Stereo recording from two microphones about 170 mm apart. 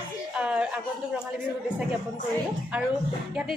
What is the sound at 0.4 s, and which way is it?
Chuckle, 5° right (ahead or behind).